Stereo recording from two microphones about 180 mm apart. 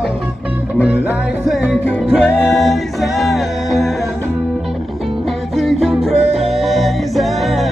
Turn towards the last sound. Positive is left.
turn(degrees=0)  # may be behind; listen again after turning